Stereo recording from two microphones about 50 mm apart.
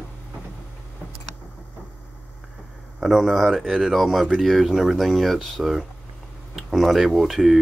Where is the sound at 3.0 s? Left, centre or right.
Centre.